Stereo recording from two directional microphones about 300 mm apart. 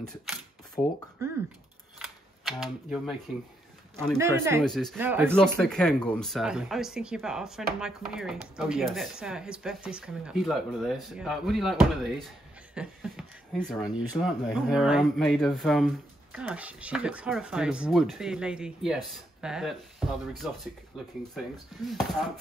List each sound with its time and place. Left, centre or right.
0.0 s speech: centre
1.2 s speech: centre
2.0 s camera: centre
4.2 s speech: centre
12.7 s a sound: centre
13.9 s speech: centre